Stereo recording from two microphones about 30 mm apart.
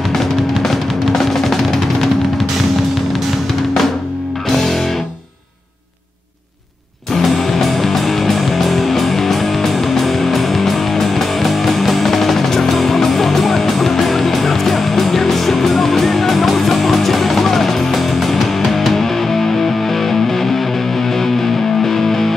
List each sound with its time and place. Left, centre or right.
0.1 s music: centre
7.2 s music: centre
21.8 s music: centre